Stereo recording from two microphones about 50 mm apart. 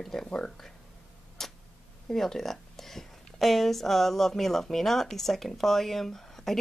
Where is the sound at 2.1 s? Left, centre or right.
Centre.